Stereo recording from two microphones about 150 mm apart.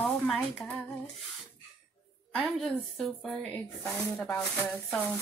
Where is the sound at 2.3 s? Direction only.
Centre (ahead or behind).